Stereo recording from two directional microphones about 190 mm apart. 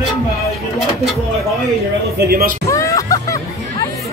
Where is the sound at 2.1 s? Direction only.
55° right (ahead or behind).